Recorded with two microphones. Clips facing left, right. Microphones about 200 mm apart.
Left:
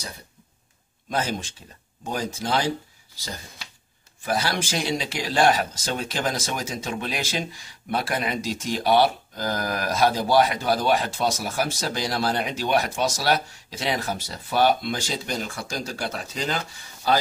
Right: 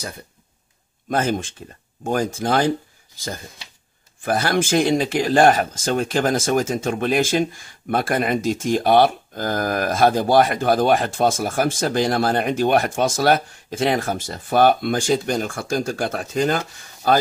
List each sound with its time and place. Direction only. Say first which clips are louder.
1.1 s speech: right 6 dB; 50° right (ahead or behind)
4.2 s speech: right 6 dB; 50° right (ahead or behind)